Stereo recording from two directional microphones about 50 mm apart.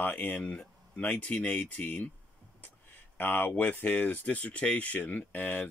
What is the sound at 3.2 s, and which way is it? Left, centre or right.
Speech, left.